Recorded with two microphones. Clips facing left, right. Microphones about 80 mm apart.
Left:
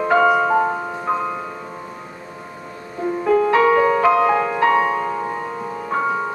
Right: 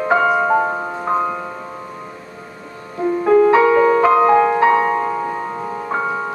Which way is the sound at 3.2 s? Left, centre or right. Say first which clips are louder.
Right 5 dB; centre.